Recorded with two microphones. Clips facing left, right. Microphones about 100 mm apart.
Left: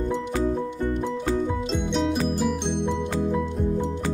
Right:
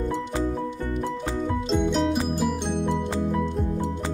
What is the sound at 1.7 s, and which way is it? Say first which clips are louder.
Music: right 6 dB; centre (ahead or behind).